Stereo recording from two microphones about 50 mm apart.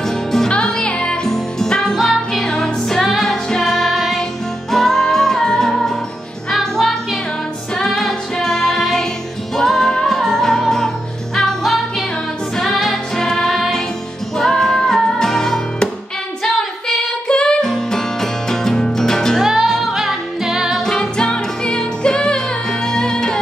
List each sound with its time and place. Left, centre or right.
0.0 s music: centre
0.5 s music: centre
17.3 s music: centre
19.4 s music: centre
20.8 s music: centre